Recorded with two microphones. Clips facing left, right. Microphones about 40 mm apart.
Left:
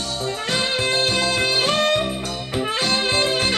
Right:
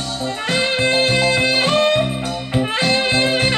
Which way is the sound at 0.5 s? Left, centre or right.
Right.